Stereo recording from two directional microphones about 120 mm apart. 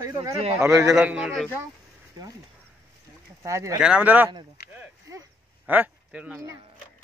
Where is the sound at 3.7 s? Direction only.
10° right (ahead or behind).